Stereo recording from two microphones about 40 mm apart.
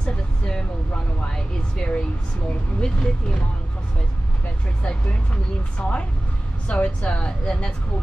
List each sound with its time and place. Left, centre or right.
0.5 s a sound: left
2.8 s speech: left
4.8 s speech: left